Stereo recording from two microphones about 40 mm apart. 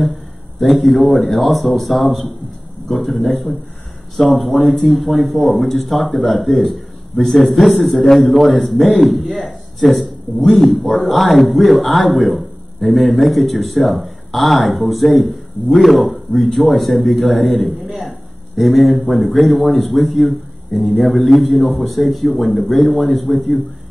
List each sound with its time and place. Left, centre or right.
0.6 s speech: centre
3.2 s a man's voice: left
4.2 s a man's voice: centre